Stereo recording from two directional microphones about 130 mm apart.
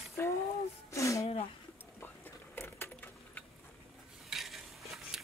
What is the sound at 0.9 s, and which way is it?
Speech, 25° left (ahead or behind).